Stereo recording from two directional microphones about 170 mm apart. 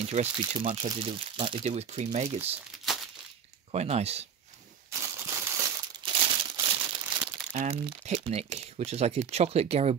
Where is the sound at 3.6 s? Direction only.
40° right (ahead or behind).